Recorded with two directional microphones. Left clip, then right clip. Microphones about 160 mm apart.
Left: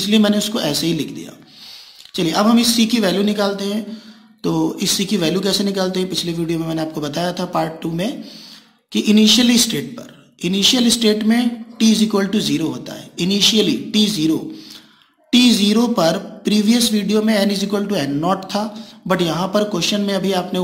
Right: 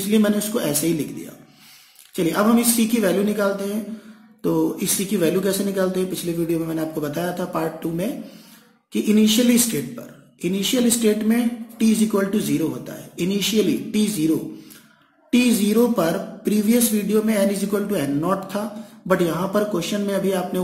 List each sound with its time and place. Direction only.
0.1 s speech: 25° left (ahead or behind)
2.1 s speech: 30° left (ahead or behind)
15.3 s speech: 30° left (ahead or behind)